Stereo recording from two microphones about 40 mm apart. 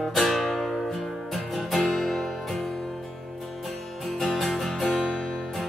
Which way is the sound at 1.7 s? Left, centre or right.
Centre.